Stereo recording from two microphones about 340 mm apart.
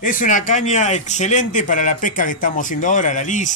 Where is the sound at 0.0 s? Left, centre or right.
Left.